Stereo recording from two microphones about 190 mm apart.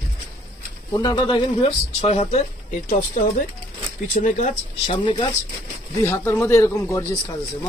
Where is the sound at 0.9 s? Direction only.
20° left (ahead or behind); by 5.0 s 40° left (ahead or behind).